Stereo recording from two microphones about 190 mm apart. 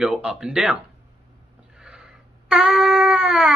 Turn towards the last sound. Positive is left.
turn(degrees=0)  # may be behind; listen again after turning